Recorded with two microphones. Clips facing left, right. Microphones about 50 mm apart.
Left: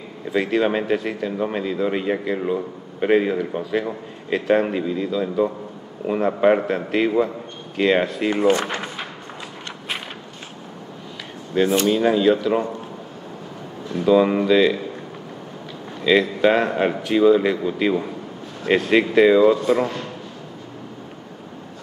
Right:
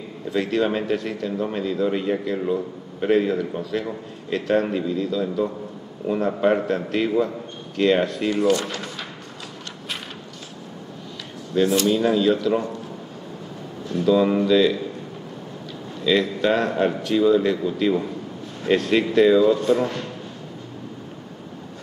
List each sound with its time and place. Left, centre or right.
0.3 s speech: centre
8.2 s speech: left
11.5 s speech: left
13.8 s speech: left
16.2 s speech: centre
19.7 s speech: centre